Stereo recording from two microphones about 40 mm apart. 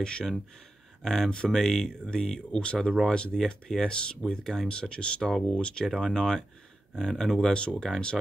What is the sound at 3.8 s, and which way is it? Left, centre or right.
Speech, left.